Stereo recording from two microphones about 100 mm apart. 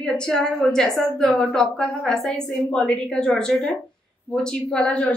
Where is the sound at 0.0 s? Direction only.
5° left (ahead or behind).